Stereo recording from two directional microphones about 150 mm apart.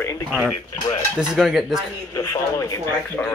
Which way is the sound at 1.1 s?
Centre (ahead or behind).